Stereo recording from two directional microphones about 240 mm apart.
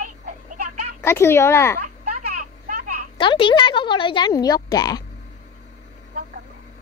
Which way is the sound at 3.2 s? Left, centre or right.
Left.